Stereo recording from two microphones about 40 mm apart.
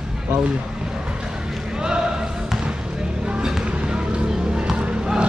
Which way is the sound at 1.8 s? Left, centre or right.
Centre.